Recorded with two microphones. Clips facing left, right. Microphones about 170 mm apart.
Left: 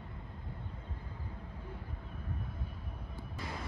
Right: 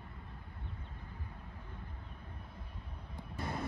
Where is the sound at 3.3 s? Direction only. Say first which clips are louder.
Right 4 dB; 55° right (ahead or behind).